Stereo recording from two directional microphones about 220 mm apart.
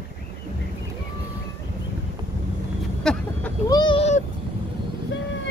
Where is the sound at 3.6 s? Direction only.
20° left (ahead or behind).